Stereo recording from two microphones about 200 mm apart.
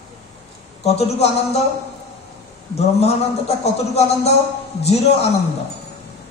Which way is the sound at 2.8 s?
30° left (ahead or behind).